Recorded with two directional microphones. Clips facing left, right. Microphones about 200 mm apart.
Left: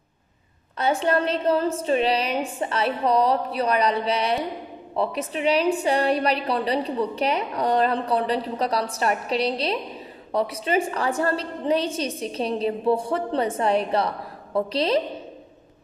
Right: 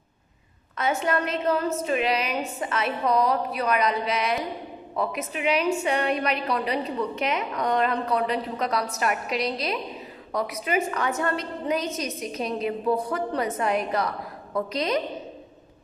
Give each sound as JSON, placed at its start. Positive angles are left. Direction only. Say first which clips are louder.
{"t": 0.7, "sound": "a woman's voice", "louder": "left 3 dB", "side_deg": 30}